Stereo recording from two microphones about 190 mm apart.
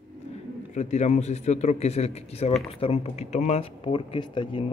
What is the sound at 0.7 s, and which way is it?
Speech, 35° left (ahead or behind).